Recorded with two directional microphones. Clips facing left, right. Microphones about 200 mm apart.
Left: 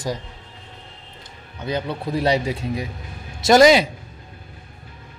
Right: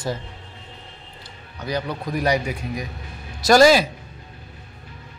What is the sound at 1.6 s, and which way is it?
A man's voice, 25° left (ahead or behind).